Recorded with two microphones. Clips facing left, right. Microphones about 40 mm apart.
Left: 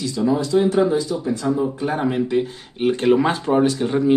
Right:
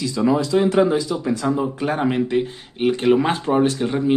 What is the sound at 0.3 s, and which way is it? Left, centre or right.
Speech, right.